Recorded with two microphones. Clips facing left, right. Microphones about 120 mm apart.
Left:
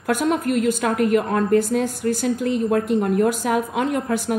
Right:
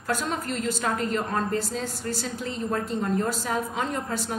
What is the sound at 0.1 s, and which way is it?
A woman's voice, 60° left (ahead or behind).